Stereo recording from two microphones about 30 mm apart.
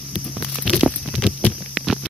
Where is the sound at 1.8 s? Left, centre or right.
Centre.